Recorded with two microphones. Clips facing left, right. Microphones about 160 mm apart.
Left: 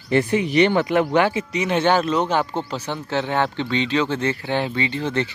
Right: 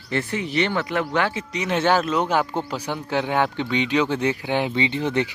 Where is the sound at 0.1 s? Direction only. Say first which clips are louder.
Left 6 dB; 15° left (ahead or behind).